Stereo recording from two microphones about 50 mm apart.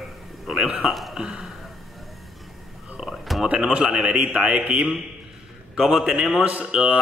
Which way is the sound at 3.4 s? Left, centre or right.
Centre.